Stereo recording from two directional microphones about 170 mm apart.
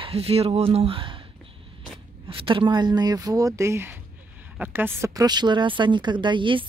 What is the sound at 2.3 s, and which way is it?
A woman's voice, 30° right (ahead or behind).